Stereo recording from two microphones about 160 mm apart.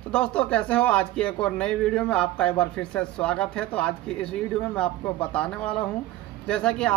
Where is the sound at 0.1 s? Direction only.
5° left (ahead or behind).